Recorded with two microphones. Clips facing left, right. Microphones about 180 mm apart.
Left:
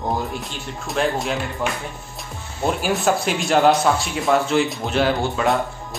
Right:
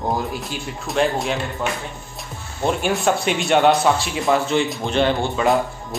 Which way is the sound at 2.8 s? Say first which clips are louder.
Left 1 dB; centre (ahead or behind).